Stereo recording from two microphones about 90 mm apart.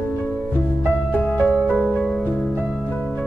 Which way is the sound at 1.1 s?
15° left (ahead or behind).